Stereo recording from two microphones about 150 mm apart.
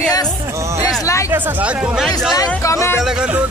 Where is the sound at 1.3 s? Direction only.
10° right (ahead or behind).